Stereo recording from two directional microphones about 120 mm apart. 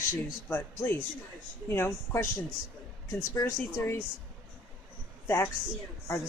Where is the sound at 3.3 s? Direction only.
20° left (ahead or behind).